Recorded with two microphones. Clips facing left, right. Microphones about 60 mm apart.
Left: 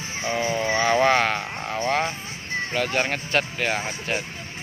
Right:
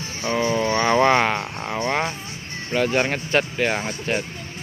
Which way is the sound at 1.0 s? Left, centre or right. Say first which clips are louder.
Right 4 dB; centre.